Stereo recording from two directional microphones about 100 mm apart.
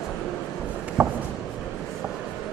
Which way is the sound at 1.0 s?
30° right (ahead or behind).